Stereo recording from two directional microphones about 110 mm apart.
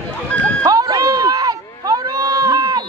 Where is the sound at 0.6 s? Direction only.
35° right (ahead or behind).